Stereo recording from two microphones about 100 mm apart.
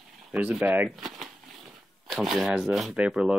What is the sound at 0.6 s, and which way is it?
Speech, 20° right (ahead or behind).